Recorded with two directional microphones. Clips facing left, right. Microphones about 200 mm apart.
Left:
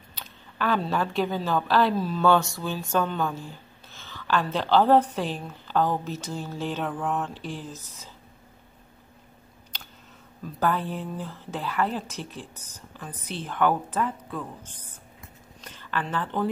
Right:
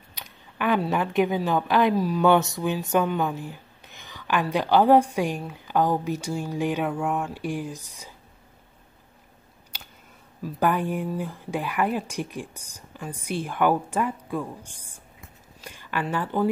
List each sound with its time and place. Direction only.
0.1 s speech: 15° right (ahead or behind)
9.7 s a sound: 10° right (ahead or behind)
10.4 s speech: 15° right (ahead or behind)